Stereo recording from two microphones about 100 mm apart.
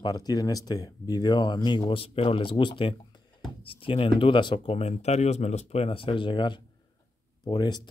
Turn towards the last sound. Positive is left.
turn(degrees=45)  # may be behind; listen again after turning